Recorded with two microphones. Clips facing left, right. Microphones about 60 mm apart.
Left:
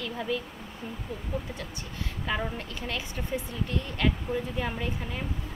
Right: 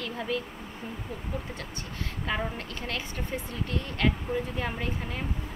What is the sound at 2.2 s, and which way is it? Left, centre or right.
Speech, centre.